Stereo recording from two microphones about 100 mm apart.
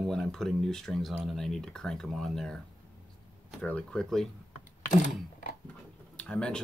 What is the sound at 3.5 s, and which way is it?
Speech, 15° left (ahead or behind).